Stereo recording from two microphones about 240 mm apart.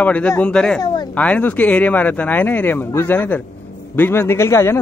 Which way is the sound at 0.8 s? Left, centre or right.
Centre.